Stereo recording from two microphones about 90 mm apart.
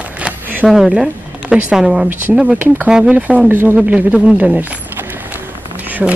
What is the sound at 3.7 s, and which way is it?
Speech, 15° right (ahead or behind).